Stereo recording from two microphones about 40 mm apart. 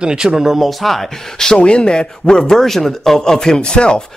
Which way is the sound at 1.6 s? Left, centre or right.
Left.